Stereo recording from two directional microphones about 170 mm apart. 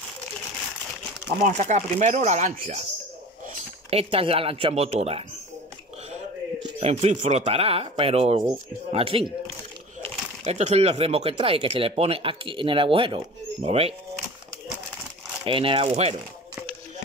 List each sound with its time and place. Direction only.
1.4 s speech: 45° right (ahead or behind)
3.9 s speech: 35° right (ahead or behind)
6.8 s speech: 40° right (ahead or behind)
10.4 s speech: 40° right (ahead or behind)
15.4 s speech: 30° right (ahead or behind)